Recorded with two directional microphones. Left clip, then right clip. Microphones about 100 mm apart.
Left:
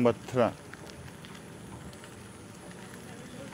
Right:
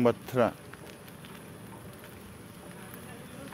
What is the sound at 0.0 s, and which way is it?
Speech, 5° right (ahead or behind).